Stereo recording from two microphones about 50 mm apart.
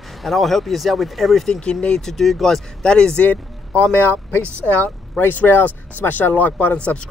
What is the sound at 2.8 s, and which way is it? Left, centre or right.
Speech, centre.